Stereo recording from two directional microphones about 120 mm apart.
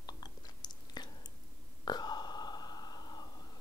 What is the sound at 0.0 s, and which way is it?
Chewing, 35° left (ahead or behind).